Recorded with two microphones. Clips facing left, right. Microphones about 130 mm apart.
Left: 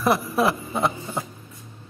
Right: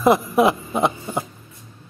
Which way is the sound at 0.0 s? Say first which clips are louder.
Right 5 dB; 20° right (ahead or behind).